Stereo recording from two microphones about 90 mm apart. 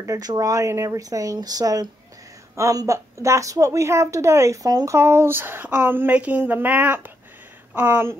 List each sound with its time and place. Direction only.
0.0 s a woman's voice: 40° right (ahead or behind); by 8.2 s 25° right (ahead or behind)